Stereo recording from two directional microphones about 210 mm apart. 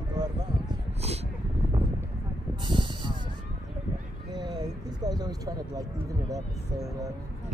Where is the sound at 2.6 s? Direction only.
20° right (ahead or behind).